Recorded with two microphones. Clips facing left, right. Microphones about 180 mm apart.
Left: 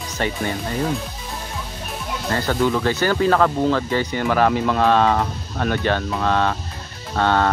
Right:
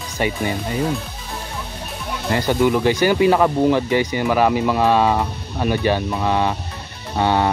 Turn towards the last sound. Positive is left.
turn(degrees=-15)  # may be behind; listen again after turning